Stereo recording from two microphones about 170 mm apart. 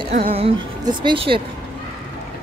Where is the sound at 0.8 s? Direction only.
30° right (ahead or behind).